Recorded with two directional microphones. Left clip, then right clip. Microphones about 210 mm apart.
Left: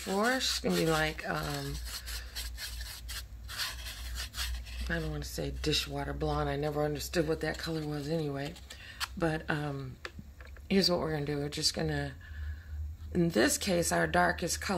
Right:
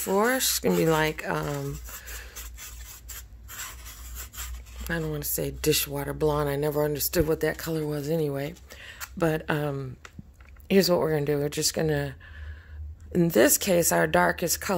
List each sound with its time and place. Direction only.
0.0 s speech: 55° right (ahead or behind)
4.8 s speech: 50° right (ahead or behind)